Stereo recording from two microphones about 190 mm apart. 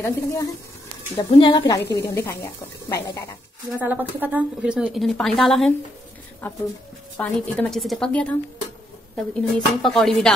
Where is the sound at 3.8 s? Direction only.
10° right (ahead or behind).